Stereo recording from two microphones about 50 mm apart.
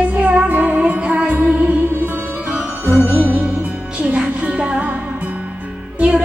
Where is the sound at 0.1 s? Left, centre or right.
Right.